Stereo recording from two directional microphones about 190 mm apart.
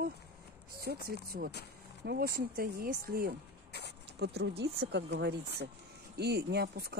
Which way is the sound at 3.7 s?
60° left (ahead or behind).